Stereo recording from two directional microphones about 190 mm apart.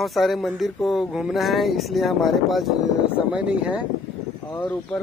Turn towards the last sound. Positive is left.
turn(degrees=10)  # may be behind; listen again after turning